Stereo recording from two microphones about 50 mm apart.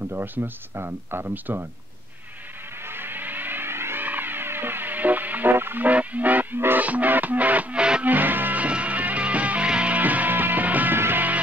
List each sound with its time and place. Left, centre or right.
0.1 s speech: right
2.8 s music: right
4.0 s music: right
5.9 s music: right
8.6 s music: right
11.0 s music: right